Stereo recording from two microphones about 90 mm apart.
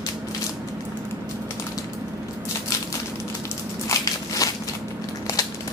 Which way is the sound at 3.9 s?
40° left (ahead or behind).